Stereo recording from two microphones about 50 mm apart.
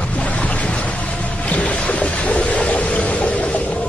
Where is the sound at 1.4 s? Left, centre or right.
Left.